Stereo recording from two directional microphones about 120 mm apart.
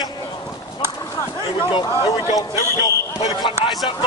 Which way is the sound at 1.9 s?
35° left (ahead or behind).